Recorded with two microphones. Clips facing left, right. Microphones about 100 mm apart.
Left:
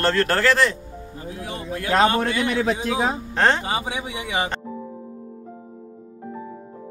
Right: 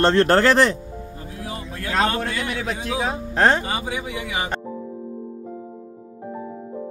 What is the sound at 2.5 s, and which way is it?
Speech, 35° left (ahead or behind).